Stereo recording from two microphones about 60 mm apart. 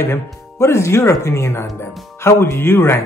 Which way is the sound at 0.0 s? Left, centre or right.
Left.